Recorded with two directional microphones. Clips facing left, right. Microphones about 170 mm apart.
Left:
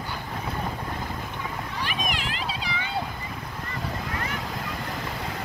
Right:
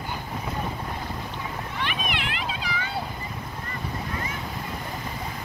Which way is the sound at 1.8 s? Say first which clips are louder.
Even; 40° left (ahead or behind).